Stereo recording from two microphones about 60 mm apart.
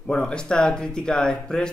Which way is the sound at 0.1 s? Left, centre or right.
Centre.